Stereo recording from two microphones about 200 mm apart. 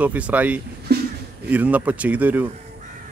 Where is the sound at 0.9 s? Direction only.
55° right (ahead or behind).